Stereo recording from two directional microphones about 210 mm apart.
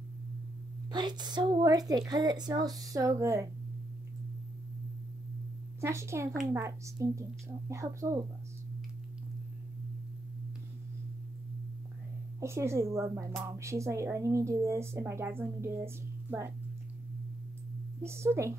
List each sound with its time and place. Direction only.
0.9 s a woman's voice: 20° right (ahead or behind)
5.8 s speech: 15° right (ahead or behind)
12.4 s speech: 15° right (ahead or behind)
18.0 s speech: 10° right (ahead or behind)